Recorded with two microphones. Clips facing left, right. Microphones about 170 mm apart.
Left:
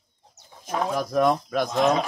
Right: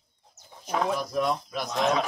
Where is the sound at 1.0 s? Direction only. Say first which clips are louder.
Left 6 dB; 50° left (ahead or behind).